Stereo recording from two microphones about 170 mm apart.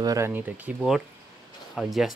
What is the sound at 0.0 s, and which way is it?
Speech, 20° right (ahead or behind).